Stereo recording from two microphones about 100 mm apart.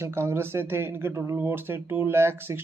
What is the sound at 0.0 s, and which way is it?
Speech, 25° right (ahead or behind).